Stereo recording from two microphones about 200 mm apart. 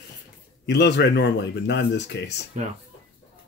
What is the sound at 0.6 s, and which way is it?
Speech, 60° left (ahead or behind).